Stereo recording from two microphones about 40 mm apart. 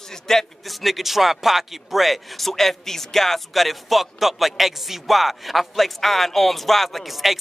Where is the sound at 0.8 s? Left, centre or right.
Centre.